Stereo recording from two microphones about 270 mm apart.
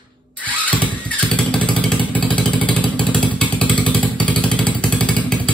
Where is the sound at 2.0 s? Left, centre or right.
Centre.